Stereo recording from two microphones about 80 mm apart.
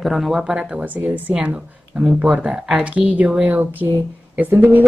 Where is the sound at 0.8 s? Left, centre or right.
Right.